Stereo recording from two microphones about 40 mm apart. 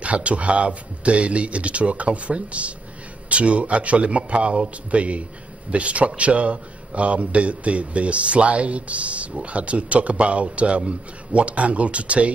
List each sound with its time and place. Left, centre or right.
0.0 s speech: right